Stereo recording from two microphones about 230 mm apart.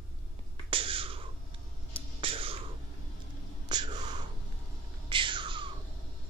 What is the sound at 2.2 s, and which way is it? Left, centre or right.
Whispering, right.